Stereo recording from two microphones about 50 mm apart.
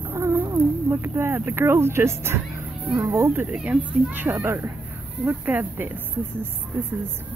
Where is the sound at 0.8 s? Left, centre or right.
Right.